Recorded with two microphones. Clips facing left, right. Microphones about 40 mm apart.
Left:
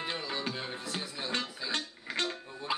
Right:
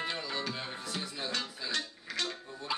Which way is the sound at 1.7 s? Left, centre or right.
Left.